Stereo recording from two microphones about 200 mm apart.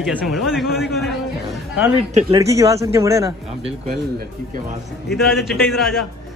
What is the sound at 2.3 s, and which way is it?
Speech, 15° right (ahead or behind).